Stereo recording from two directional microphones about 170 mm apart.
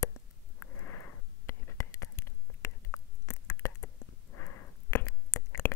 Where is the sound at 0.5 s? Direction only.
15° left (ahead or behind).